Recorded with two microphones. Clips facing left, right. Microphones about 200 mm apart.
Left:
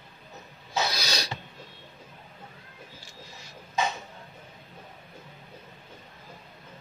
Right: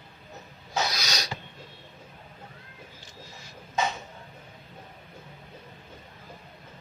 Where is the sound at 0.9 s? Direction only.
30° left (ahead or behind).